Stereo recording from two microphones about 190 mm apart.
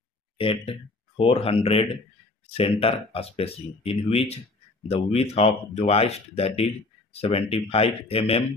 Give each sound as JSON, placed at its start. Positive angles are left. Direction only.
{"t": 0.4, "sound": "speech", "side_deg": 30}